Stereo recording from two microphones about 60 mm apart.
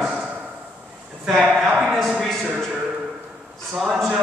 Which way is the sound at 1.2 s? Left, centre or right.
Centre.